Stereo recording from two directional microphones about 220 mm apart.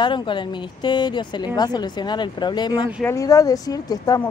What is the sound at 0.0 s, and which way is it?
Speech, 20° left (ahead or behind).